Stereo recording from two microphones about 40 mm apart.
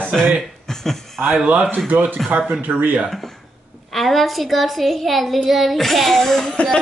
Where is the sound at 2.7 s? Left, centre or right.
Right.